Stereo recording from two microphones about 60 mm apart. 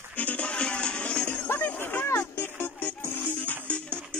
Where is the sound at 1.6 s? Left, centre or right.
Left.